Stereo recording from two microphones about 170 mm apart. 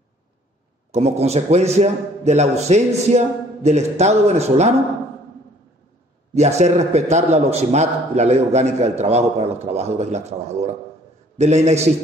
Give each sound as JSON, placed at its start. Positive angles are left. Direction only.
{"t": 0.9, "sound": "a man's voice", "side_deg": -40}
{"t": 6.3, "sound": "a man's voice", "side_deg": -40}